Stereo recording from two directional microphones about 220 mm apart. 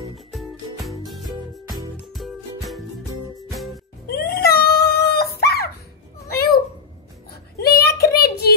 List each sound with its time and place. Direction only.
0.3 s music: centre (ahead or behind)
4.1 s dog: 45° left (ahead or behind)
6.2 s a sound: 45° left (ahead or behind)
7.5 s child singing: 45° left (ahead or behind)